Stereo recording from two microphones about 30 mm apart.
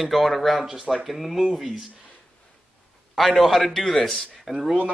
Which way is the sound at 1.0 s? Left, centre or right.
Centre.